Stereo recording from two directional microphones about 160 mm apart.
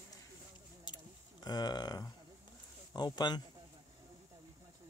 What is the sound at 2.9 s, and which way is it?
Speech, 25° left (ahead or behind).